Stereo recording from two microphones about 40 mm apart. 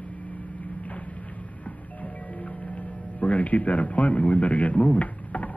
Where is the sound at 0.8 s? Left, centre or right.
Left.